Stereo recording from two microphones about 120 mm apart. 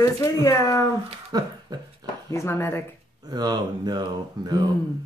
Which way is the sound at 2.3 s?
20° left (ahead or behind).